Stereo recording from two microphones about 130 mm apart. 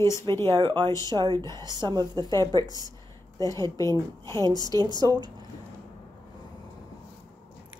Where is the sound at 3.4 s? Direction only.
25° left (ahead or behind).